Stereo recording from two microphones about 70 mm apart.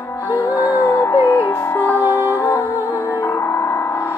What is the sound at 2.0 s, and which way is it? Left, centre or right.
Music, right.